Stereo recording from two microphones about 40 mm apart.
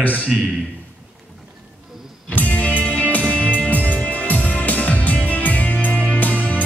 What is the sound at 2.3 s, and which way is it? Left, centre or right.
Music, left.